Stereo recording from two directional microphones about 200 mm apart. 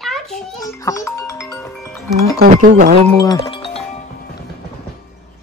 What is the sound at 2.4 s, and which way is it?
Music, 45° right (ahead or behind).